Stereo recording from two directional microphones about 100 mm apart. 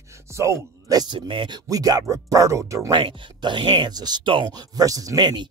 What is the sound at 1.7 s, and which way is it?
Speech, 40° right (ahead or behind).